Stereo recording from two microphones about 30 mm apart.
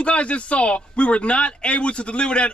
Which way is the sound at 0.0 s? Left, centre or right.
Left.